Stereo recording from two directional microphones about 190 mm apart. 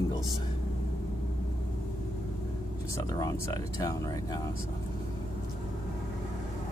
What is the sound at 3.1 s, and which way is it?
Speech, 20° left (ahead or behind).